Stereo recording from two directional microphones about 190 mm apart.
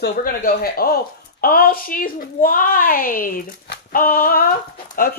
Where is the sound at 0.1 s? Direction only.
50° left (ahead or behind).